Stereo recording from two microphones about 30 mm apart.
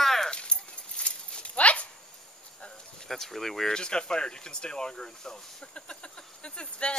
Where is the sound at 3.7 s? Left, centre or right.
Left.